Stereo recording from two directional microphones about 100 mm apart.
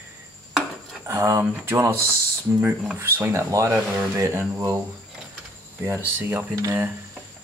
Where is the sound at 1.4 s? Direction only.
20° right (ahead or behind).